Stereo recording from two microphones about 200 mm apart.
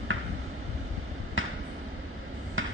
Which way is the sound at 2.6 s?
80° right.